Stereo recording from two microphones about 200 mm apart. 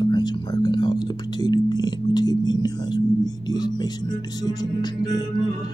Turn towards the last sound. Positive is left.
turn(degrees=20)  # may be behind; listen again after turning